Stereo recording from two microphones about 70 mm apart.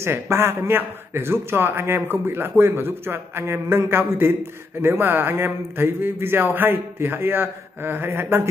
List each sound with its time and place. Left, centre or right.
0.0 s a man's voice: right